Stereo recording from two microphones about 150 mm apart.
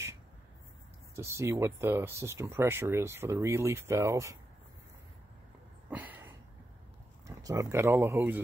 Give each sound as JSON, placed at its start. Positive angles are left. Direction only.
{"t": 1.1, "sound": "speech", "side_deg": -20}
{"t": 5.9, "sound": "a sound", "side_deg": -10}
{"t": 7.2, "sound": "speech", "side_deg": -20}